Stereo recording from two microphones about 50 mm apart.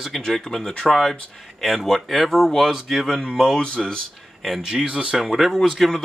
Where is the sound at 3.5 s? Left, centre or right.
Centre.